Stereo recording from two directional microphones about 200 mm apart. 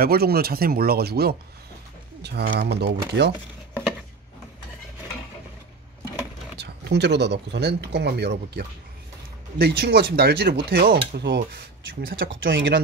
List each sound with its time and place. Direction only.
0.0 s speech: 50° right (ahead or behind)
6.5 s speech: 55° right (ahead or behind)
12.2 s speech: 65° right (ahead or behind)